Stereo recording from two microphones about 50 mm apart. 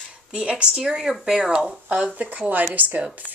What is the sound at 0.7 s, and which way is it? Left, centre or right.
Speech, centre.